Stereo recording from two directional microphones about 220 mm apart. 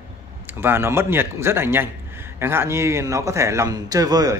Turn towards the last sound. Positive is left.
turn(degrees=-15)  # may be behind; listen again after turning